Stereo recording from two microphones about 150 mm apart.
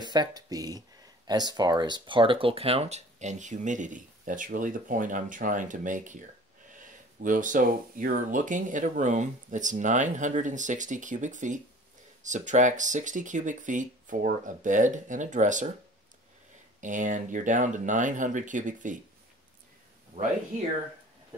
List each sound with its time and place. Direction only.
0.0 s speech: 30° right (ahead or behind); by 15.7 s 55° right (ahead or behind)
16.8 s speech: 60° right (ahead or behind)
20.1 s speech: 70° right (ahead or behind)